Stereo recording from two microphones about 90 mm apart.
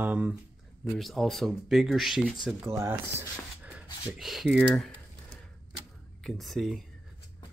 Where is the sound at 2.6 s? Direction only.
25° right (ahead or behind).